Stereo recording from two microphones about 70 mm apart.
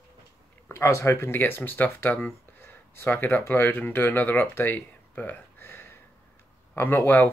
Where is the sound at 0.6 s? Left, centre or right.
Left.